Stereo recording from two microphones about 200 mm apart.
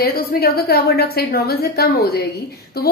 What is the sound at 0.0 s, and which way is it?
A woman's voice, 50° left (ahead or behind).